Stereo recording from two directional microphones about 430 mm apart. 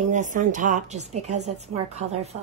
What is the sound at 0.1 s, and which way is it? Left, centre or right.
Speech, centre.